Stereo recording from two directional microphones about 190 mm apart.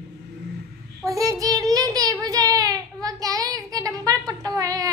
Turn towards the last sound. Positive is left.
turn(degrees=-20)  # may be behind; listen again after turning